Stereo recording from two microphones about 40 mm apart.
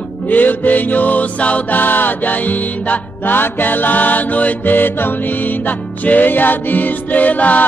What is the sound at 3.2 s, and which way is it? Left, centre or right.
Music, left.